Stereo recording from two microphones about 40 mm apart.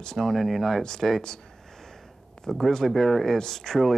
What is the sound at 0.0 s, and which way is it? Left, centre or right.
Speech, centre.